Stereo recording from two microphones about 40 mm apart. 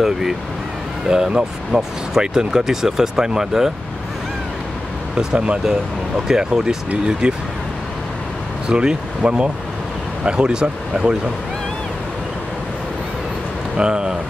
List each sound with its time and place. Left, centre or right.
0.0 s speech: centre
5.1 s speech: right
8.6 s speech: right
13.7 s speech: right